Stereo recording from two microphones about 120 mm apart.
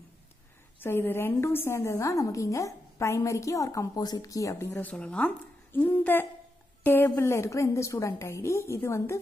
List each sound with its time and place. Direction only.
0.7 s a woman's voice: 20° left (ahead or behind)